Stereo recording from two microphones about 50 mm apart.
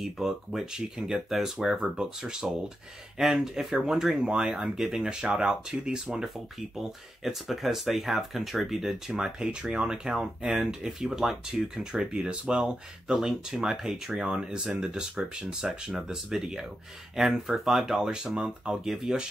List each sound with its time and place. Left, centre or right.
0.0 s speech: centre
14.2 s speech: centre
14.6 s speech: centre
18.9 s speech: centre